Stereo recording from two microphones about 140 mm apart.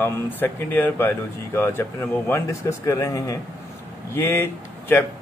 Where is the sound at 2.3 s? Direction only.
20° left (ahead or behind).